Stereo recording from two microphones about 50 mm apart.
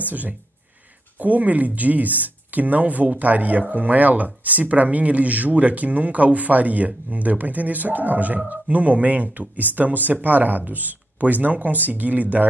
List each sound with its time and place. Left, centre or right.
0.1 s speech: right